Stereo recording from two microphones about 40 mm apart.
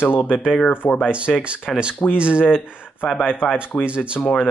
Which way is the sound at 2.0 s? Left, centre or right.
Right.